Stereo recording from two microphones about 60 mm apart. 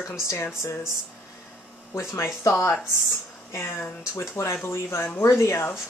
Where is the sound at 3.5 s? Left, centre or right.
Left.